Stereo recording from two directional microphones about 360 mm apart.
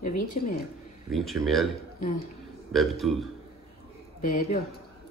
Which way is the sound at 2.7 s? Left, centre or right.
Centre.